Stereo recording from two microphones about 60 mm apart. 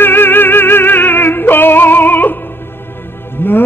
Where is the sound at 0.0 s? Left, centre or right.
Left.